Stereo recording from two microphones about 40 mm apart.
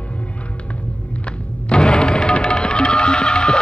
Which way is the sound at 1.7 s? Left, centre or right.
Left.